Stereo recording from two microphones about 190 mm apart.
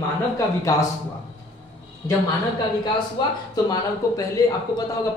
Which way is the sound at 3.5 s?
20° left (ahead or behind).